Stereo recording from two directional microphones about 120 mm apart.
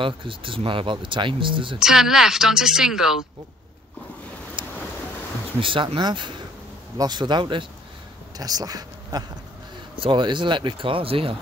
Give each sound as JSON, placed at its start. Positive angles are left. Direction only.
{"t": 0.0, "sound": "speech", "side_deg": -45}
{"t": 1.8, "sound": "a woman's voice", "side_deg": -5}
{"t": 4.6, "sound": "boat", "side_deg": -45}
{"t": 5.6, "sound": "a man's voice", "side_deg": -45}
{"t": 9.9, "sound": "speech", "side_deg": -45}